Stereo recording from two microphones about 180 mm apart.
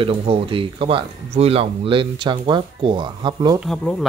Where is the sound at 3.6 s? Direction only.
Centre (ahead or behind).